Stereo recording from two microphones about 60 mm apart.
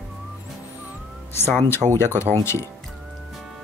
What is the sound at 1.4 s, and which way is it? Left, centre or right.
Speech, left.